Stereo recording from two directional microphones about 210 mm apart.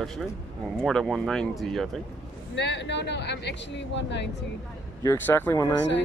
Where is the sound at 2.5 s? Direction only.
55° left (ahead or behind).